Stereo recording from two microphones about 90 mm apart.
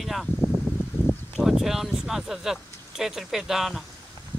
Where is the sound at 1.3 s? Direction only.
5° right (ahead or behind).